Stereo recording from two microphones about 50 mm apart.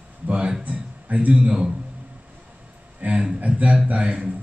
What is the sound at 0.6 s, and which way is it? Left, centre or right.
A man's voice, right.